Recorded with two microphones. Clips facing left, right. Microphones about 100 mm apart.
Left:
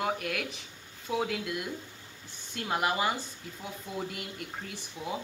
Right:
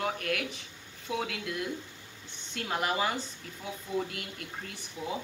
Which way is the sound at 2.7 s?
10° left (ahead or behind).